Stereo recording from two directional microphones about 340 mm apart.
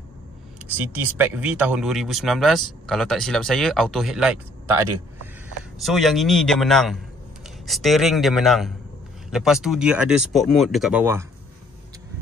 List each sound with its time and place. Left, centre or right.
0.6 s speech: centre